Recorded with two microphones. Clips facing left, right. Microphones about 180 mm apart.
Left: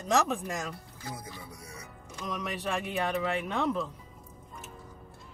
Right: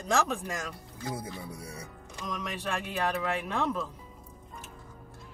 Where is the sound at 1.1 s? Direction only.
30° right (ahead or behind).